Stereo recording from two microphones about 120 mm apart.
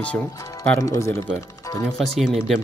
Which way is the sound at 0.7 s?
25° left (ahead or behind).